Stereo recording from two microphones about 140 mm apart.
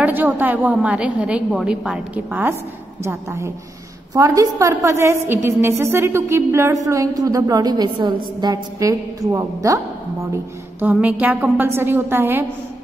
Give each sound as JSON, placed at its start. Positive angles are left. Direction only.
{"t": 0.0, "sound": "a woman's voice", "side_deg": -10}
{"t": 10.3, "sound": "a woman's voice", "side_deg": -10}